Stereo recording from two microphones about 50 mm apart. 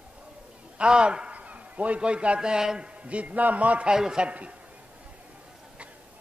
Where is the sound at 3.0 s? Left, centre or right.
Right.